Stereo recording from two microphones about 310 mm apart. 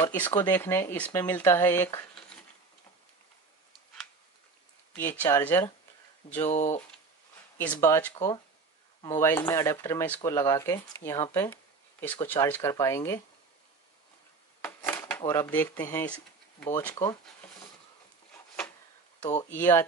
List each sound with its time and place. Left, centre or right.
0.0 s speech: centre
4.9 s speech: centre
6.4 s speech: left
7.5 s speech: centre
14.6 s speech: centre
19.5 s speech: centre